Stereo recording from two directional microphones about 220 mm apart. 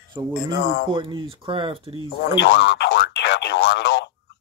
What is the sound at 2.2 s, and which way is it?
Speech, 55° left (ahead or behind).